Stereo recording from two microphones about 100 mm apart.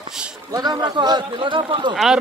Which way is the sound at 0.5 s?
40° right (ahead or behind).